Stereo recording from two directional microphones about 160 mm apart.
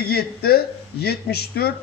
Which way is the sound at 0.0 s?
75° left (ahead or behind).